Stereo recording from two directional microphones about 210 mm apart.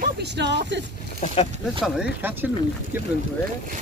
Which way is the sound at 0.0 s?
55° right (ahead or behind).